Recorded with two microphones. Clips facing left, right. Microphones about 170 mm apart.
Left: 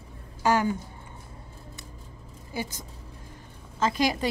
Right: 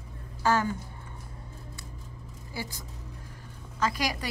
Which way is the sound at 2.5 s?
20° left (ahead or behind).